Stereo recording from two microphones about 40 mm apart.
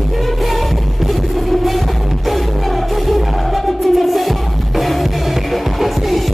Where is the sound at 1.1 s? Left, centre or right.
Centre.